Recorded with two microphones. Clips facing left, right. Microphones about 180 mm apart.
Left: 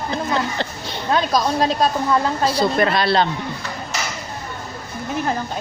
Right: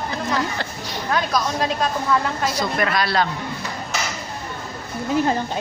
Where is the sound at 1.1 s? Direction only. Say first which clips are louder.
Left 4 dB; 30° left (ahead or behind).